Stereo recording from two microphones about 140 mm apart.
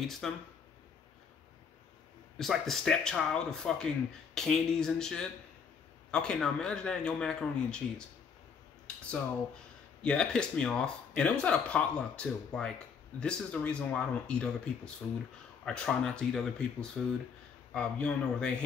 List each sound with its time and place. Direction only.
0.0 s speech: centre (ahead or behind)
2.3 s speech: centre (ahead or behind)
8.8 s speech: 10° left (ahead or behind)
15.6 s speech: 5° left (ahead or behind)